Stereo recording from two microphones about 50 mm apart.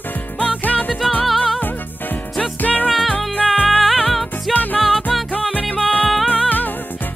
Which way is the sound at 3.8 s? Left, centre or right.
Centre.